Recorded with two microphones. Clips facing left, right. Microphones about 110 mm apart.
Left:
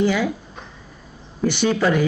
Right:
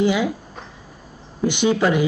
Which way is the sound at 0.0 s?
15° right (ahead or behind).